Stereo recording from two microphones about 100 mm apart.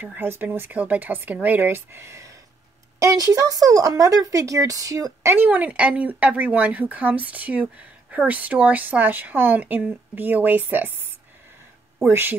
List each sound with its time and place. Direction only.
0.0 s a woman's voice: 20° right (ahead or behind); by 5.3 s 35° right (ahead or behind)
5.3 s speech: 20° right (ahead or behind)